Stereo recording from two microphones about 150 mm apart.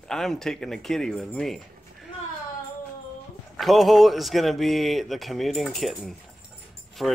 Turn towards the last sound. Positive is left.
turn(degrees=0)  # may be behind; listen again after turning